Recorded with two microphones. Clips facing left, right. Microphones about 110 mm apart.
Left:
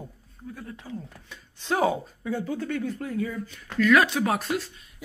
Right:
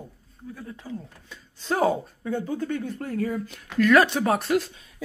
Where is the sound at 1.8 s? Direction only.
45° right (ahead or behind).